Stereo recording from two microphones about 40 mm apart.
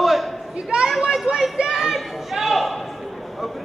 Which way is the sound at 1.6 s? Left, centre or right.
Centre.